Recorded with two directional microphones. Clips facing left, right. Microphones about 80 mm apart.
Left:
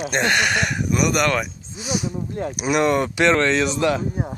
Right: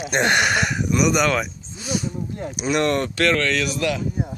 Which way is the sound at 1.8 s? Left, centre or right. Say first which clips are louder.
Left 1 dB; centre.